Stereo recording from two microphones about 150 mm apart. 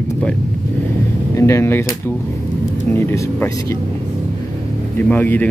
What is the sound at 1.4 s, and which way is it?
Speech, 20° left (ahead or behind).